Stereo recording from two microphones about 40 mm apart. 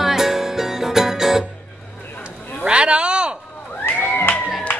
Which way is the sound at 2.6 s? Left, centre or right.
Right.